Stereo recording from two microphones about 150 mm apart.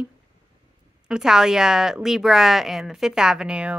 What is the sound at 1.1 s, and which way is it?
A woman's voice, 5° right (ahead or behind).